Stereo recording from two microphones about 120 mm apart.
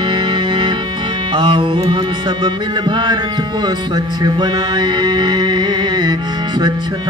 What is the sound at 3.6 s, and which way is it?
Music, 35° right (ahead or behind).